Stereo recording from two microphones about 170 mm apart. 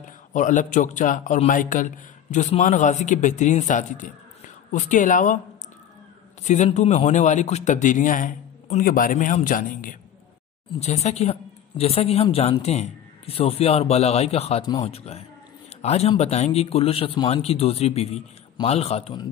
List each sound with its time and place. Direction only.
0.0 s a man's voice: 50° left (ahead or behind)
6.4 s a man's voice: 45° left (ahead or behind)
10.7 s speech: 40° left (ahead or behind)